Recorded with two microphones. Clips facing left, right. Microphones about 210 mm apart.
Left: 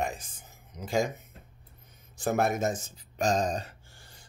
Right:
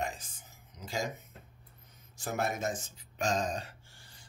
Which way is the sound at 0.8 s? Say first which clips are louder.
Left 6 dB; 55° left (ahead or behind).